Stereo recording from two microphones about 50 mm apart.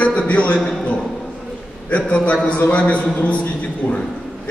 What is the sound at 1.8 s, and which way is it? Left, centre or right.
A man's voice, left.